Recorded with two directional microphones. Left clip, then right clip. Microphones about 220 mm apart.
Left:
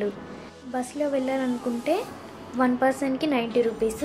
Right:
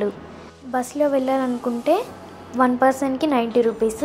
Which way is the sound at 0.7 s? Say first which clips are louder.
Right 6 dB; 15° right (ahead or behind).